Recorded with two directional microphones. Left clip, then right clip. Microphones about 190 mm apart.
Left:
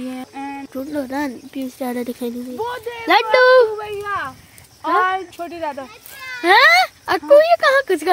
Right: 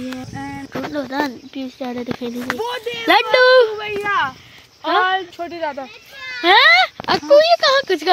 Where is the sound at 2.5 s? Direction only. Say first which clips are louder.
Right 2 dB; 25° right (ahead or behind).